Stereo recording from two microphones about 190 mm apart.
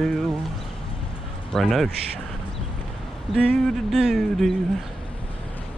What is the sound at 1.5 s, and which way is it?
Speech, centre (ahead or behind).